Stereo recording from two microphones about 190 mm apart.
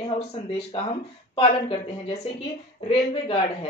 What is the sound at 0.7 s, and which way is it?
A woman's voice, 30° left (ahead or behind).